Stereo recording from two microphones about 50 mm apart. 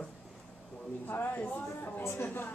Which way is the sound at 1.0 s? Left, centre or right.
Left.